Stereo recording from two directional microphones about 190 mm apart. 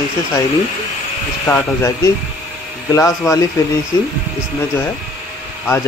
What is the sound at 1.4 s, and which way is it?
Speech, 10° left (ahead or behind).